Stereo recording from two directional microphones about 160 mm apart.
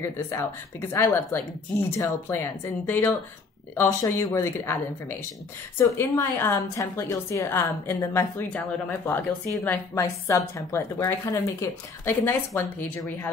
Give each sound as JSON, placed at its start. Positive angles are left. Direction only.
{"t": 0.0, "sound": "a woman's voice", "side_deg": 15}